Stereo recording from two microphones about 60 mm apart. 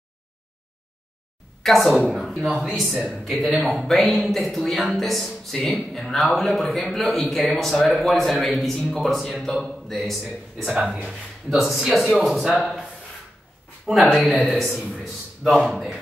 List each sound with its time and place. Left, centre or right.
1.6 s speech: centre
13.8 s speech: centre